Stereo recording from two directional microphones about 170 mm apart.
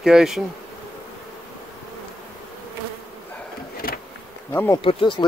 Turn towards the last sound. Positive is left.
turn(degrees=30)  # may be behind; listen again after turning